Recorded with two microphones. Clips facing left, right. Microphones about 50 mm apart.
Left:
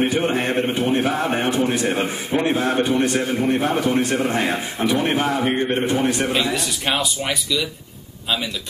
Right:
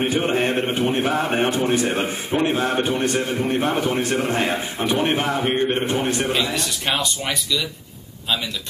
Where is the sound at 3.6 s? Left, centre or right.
Right.